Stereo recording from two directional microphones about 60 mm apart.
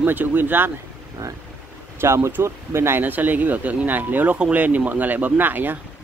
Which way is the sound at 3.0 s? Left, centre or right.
Right.